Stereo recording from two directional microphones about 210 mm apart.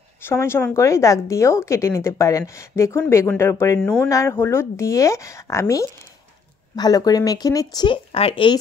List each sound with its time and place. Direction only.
0.2 s a woman's voice: 10° left (ahead or behind)